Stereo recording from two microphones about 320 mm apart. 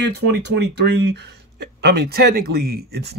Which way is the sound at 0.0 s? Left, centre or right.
Right.